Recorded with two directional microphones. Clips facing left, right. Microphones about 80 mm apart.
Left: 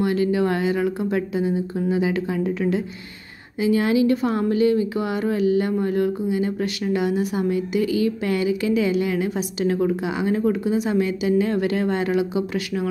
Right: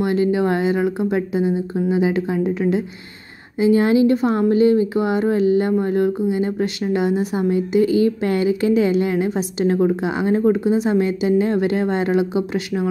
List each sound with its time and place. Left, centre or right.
0.0 s speech: right
3.6 s speech: right